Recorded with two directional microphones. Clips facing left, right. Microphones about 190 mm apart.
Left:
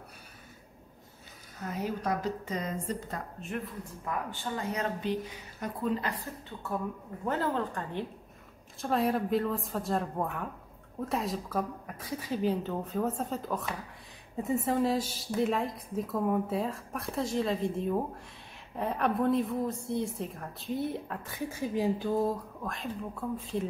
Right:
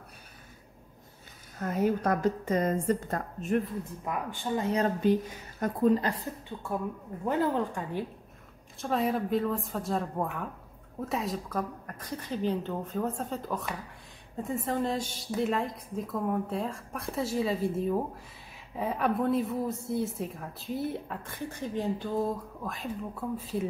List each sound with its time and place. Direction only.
1.6 s a woman's voice: 50° right (ahead or behind)
4.0 s speech: 15° right (ahead or behind)
4.7 s a woman's voice: 40° right (ahead or behind)
7.2 s speech: 15° right (ahead or behind)
8.8 s a woman's voice: centre (ahead or behind)